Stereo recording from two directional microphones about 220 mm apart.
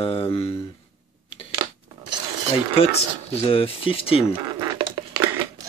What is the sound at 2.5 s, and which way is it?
Speech, 25° left (ahead or behind).